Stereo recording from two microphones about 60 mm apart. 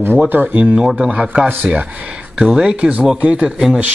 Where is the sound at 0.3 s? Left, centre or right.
Right.